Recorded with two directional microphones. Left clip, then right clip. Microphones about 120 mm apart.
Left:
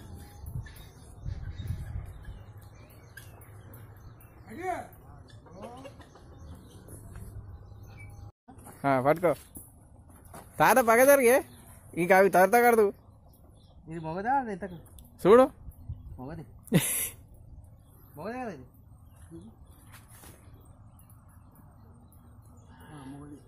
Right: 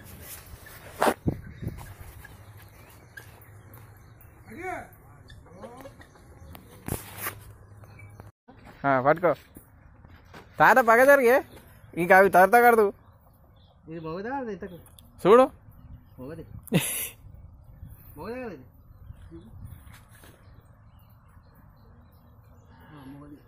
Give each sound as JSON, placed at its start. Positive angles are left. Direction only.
{"t": 4.6, "sound": "a sound", "side_deg": 0}
{"t": 8.6, "sound": "speech", "side_deg": 0}
{"t": 10.5, "sound": "speech", "side_deg": 0}
{"t": 13.8, "sound": "speech", "side_deg": 40}
{"t": 15.2, "sound": "speech", "side_deg": 10}
{"t": 16.6, "sound": "a sound", "side_deg": 10}
{"t": 18.1, "sound": "speech", "side_deg": 35}